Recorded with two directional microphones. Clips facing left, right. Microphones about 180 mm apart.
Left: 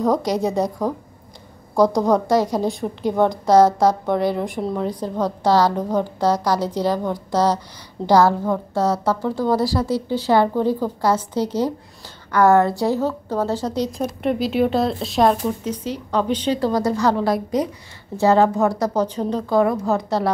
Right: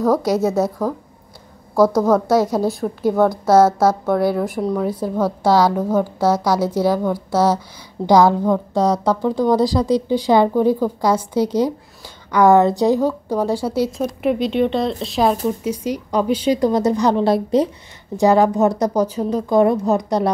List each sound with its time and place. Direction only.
0.2 s a woman's voice: 5° right (ahead or behind)
0.7 s a woman's voice: 15° left (ahead or behind)
2.7 s a woman's voice: 5° right (ahead or behind); by 17.6 s 30° right (ahead or behind)
18.1 s a woman's voice: 15° right (ahead or behind)
19.0 s a woman's voice: 10° right (ahead or behind)
19.5 s speech: 20° right (ahead or behind)